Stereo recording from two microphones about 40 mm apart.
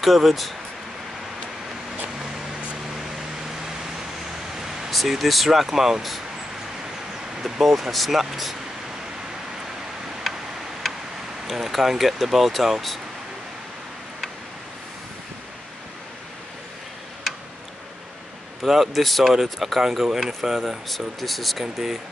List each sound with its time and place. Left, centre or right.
0.0 s speech: centre
2.7 s a sound: right
4.6 s a sound: centre
4.9 s speech: centre
7.4 s speech: centre
11.4 s speech: centre
18.6 s speech: centre